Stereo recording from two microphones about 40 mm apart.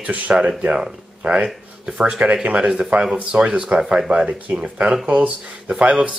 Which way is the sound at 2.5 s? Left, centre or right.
Right.